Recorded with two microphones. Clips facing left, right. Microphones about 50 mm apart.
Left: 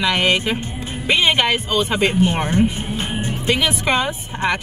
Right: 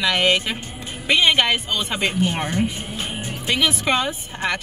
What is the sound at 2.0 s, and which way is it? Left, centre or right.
Speech, left.